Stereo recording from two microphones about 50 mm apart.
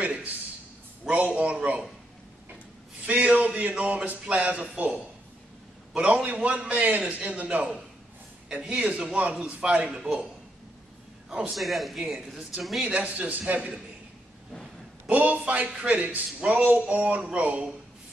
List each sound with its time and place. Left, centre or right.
0.0 s a sound: right
1.2 s speech: right
3.1 s speech: right
11.5 s a man's voice: centre
12.8 s a man's voice: right
13.2 s speech: right
15.0 s a man's voice: right